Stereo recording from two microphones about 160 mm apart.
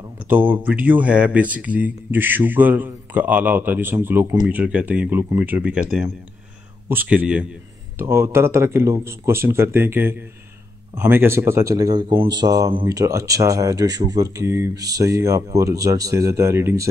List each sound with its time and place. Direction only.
0.3 s speech: 10° right (ahead or behind)